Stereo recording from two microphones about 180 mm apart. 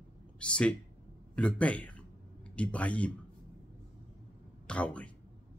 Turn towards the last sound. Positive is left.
turn(degrees=5)  # may be behind; listen again after turning